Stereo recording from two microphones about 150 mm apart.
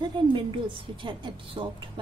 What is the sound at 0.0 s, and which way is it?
A woman's voice, 35° right (ahead or behind).